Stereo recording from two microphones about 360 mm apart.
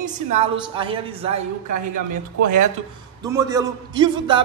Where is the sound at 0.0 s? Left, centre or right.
Centre.